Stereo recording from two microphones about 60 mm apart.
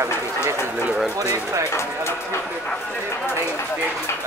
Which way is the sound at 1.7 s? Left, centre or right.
Left.